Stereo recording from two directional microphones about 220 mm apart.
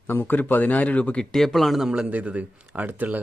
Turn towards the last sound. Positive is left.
turn(degrees=-10)  # may be behind; listen again after turning